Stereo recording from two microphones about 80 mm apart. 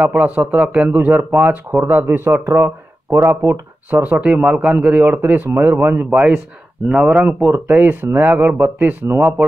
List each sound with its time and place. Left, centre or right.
0.0 s speech: right
5.0 s speech: right
7.4 s speech: right